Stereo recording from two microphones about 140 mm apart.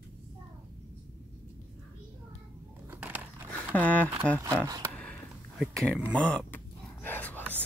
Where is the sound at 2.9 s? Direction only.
15° right (ahead or behind).